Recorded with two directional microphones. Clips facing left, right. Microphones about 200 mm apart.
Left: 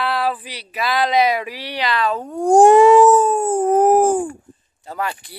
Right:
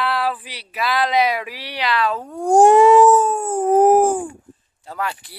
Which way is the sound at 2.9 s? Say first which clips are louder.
Left 1 dB; 10° left (ahead or behind).